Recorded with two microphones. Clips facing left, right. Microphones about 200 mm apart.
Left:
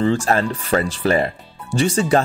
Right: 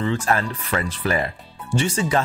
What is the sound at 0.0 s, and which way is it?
Speech, 30° left (ahead or behind).